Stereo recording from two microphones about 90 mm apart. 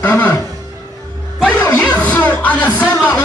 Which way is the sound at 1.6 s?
15° left (ahead or behind).